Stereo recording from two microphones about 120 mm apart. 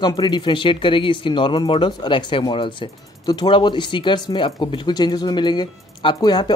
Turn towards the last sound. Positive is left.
turn(degrees=35)  # may be behind; listen again after turning